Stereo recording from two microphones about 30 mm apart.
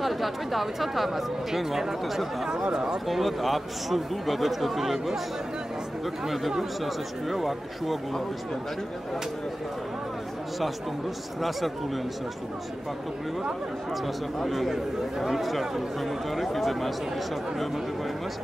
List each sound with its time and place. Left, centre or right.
0.0 s speech: centre
3.1 s speech: centre
6.2 s speech: centre
14.0 s speech: centre